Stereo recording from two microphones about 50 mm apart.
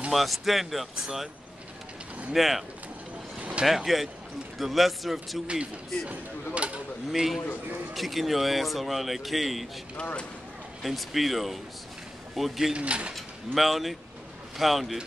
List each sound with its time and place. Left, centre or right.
0.1 s speech: centre
2.3 s speech: centre
3.3 s a sound: right
3.6 s speech: centre
6.0 s speech: right
7.1 s speech: centre
10.8 s speech: centre
12.7 s speech: right
13.1 s speech: centre